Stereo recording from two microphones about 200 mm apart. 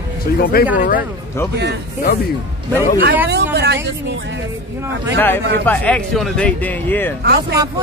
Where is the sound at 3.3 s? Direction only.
55° right (ahead or behind).